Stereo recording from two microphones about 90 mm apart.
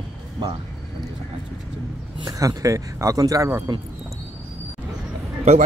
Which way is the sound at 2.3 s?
40° right (ahead or behind).